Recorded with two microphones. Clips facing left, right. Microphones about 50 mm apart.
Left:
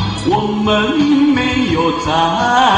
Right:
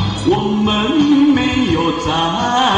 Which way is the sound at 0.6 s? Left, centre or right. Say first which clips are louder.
Left 2 dB; left.